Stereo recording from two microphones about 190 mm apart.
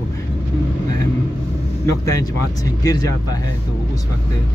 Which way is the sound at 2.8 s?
20° left (ahead or behind).